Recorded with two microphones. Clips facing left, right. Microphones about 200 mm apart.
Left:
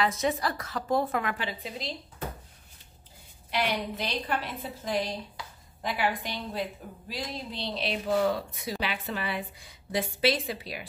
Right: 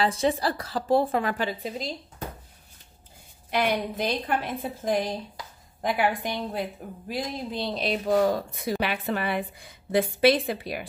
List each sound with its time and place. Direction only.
0.0 s a woman's voice: 30° right (ahead or behind)
1.4 s a woman's voice: 45° right (ahead or behind)
3.4 s a woman's voice: 50° right (ahead or behind)
8.5 s a woman's voice: 55° right (ahead or behind)